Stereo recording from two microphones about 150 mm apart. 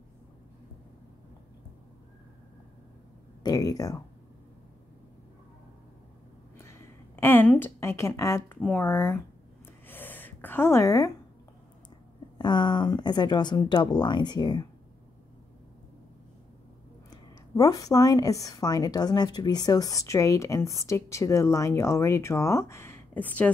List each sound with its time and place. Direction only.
3.4 s a woman's voice: 25° left (ahead or behind)
7.2 s speech: 15° left (ahead or behind)
9.8 s a sound: 15° left (ahead or behind)
12.4 s a woman's voice: 30° left (ahead or behind)
17.1 s a woman's voice: 25° left (ahead or behind)